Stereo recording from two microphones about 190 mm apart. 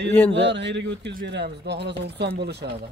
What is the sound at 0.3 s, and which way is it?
A man's voice, 65° right (ahead or behind).